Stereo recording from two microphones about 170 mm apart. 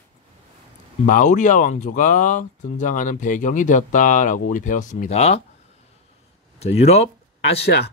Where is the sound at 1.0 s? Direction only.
50° left (ahead or behind).